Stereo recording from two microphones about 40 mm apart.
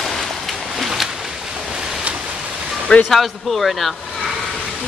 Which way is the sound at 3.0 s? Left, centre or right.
Centre.